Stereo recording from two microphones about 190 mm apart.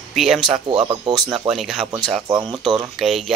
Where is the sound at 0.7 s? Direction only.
25° right (ahead or behind).